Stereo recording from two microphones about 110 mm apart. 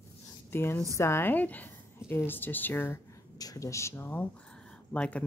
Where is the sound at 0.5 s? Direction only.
20° left (ahead or behind).